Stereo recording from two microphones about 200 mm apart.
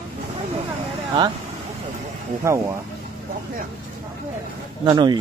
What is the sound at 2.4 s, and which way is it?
Speech, 15° right (ahead or behind).